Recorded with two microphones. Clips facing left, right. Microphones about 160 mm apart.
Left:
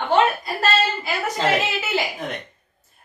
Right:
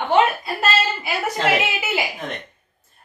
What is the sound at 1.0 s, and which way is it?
A woman's voice, 10° right (ahead or behind).